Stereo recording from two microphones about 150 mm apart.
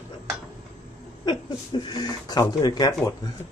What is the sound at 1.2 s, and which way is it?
Speech, 30° left (ahead or behind).